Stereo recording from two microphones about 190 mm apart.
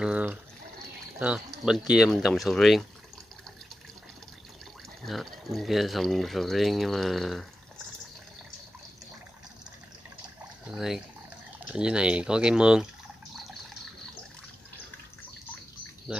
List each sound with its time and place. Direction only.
0.0 s water: 5° right (ahead or behind)
1.2 s speech: 5° right (ahead or behind)
5.0 s speech: centre (ahead or behind)
10.7 s speech: centre (ahead or behind)